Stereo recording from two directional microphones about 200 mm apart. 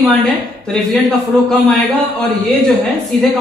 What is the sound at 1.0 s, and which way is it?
Speech, centre (ahead or behind).